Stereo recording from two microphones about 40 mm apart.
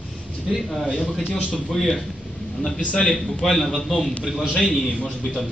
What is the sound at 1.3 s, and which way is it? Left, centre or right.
Speech, left.